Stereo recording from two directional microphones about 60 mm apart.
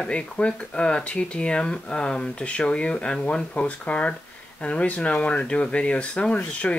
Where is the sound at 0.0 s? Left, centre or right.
Centre.